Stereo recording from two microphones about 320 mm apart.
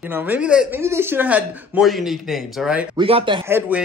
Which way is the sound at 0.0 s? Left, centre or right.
Centre.